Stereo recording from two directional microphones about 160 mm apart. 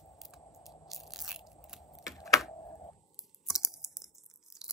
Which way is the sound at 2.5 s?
30° left (ahead or behind).